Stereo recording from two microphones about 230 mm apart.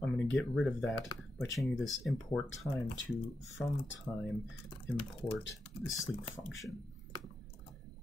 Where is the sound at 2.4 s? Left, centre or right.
Left.